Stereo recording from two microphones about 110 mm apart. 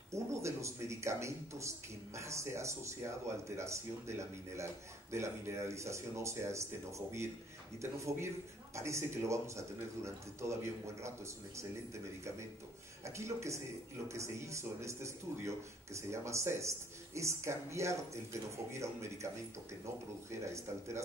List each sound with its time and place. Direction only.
0.1 s a man's voice: 25° right (ahead or behind)